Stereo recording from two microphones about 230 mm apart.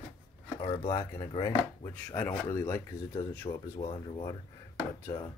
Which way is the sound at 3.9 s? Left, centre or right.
Left.